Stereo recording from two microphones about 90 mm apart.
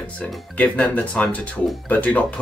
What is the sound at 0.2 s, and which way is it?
Speech, 15° left (ahead or behind).